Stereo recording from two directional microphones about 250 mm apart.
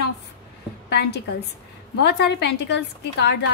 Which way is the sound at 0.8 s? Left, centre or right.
Left.